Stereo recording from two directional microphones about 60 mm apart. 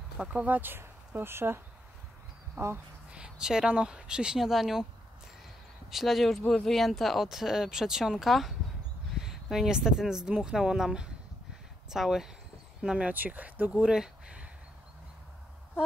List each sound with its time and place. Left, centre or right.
0.2 s speech: right
3.1 s speech: centre
5.9 s speech: centre
13.1 s speech: right
13.7 s a sound: centre